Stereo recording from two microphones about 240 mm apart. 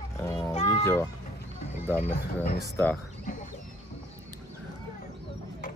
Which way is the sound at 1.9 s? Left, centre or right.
Left.